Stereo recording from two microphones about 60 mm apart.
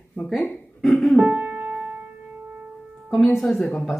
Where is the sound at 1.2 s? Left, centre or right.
Right.